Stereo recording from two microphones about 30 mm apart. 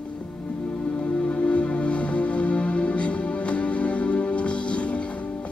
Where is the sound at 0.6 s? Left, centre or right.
Left.